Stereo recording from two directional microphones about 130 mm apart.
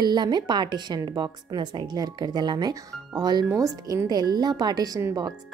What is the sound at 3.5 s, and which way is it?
Speech, 20° right (ahead or behind).